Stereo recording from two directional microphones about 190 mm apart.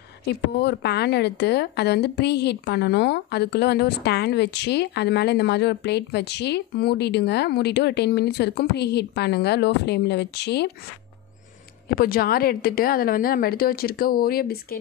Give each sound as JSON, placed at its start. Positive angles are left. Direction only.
{"t": 0.2, "sound": "a woman's voice", "side_deg": 60}
{"t": 11.9, "sound": "a woman's voice", "side_deg": 50}